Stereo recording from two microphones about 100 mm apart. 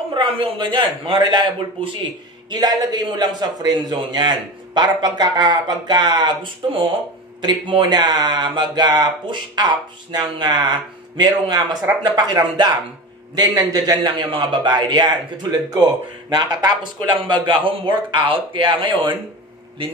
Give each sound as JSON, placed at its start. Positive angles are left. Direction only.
{"t": 0.1, "sound": "a man's voice", "side_deg": -65}
{"t": 13.7, "sound": "a man's voice", "side_deg": -40}
{"t": 14.1, "sound": "a man's voice", "side_deg": -60}